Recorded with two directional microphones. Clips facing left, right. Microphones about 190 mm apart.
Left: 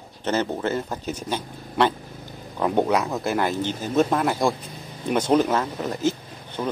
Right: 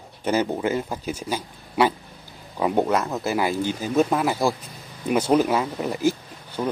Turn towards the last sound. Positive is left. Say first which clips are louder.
# right 1 dB
turn(degrees=-10)  # may be behind; listen again after turning